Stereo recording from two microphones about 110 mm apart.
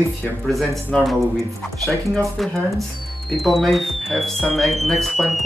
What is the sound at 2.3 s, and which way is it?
Speech, centre (ahead or behind).